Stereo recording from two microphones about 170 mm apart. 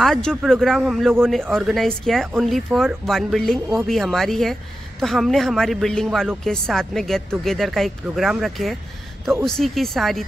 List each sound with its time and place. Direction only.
0.0 s a woman's voice: 5° left (ahead or behind)